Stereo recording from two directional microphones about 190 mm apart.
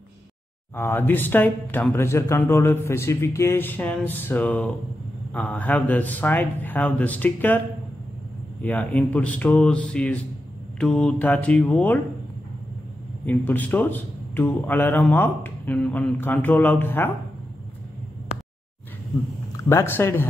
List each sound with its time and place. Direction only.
0.7 s speech: 10° left (ahead or behind)
8.6 s speech: 10° left (ahead or behind)
13.2 s speech: 10° left (ahead or behind)
18.3 s a sound: 40° left (ahead or behind)
19.5 s speech: 15° left (ahead or behind)